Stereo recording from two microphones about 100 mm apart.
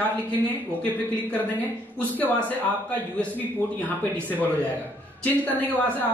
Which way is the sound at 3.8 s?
15° left (ahead or behind).